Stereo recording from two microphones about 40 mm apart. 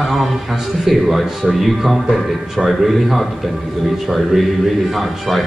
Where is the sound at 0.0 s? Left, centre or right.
Centre.